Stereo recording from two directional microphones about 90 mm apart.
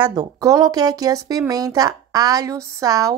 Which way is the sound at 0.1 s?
45° right (ahead or behind).